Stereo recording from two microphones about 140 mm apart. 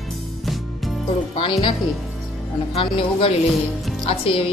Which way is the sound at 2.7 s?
45° left (ahead or behind).